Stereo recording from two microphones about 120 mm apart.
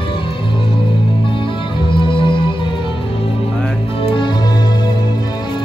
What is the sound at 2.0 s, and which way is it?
Music, 45° left (ahead or behind).